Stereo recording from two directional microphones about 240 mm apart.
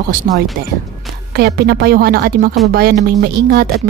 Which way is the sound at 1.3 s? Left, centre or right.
Right.